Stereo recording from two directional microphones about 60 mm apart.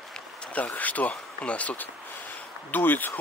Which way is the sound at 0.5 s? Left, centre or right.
Left.